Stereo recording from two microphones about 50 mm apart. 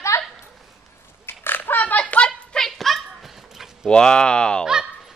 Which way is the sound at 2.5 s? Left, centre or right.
Centre.